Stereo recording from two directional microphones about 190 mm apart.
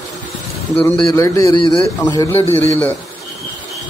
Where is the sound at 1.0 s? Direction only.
15° left (ahead or behind).